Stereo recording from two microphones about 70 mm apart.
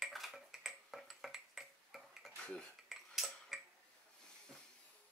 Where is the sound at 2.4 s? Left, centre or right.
Centre.